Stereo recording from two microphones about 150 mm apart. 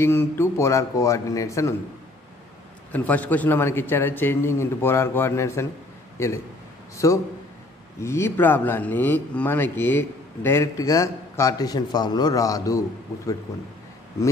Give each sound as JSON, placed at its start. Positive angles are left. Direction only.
{"t": 0.0, "sound": "a man's voice", "side_deg": 15}
{"t": 2.9, "sound": "a man's voice", "side_deg": 10}